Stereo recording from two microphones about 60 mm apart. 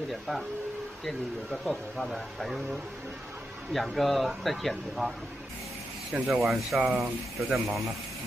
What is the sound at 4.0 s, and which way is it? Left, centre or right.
Speech, centre.